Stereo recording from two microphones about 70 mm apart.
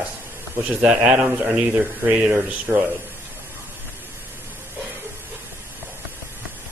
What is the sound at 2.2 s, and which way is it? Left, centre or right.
Speech, centre.